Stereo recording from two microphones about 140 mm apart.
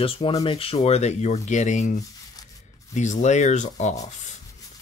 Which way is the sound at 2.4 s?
25° left (ahead or behind).